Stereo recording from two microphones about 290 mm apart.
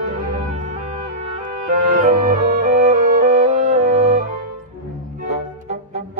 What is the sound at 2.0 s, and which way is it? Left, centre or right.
Music, right.